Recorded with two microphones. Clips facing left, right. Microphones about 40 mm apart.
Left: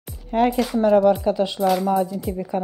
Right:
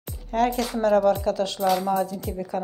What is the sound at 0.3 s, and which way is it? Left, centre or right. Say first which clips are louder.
Speech: left 4 dB; centre.